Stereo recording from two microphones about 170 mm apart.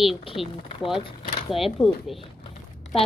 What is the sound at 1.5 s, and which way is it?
Speech, centre (ahead or behind).